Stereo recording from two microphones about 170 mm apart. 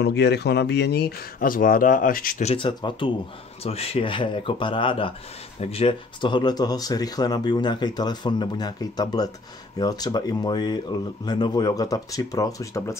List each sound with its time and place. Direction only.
0.0 s speech: 80° left; by 2.4 s 55° left (ahead or behind)
2.4 s speech: 30° left (ahead or behind)